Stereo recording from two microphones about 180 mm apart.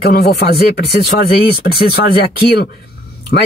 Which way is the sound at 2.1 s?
60° left (ahead or behind).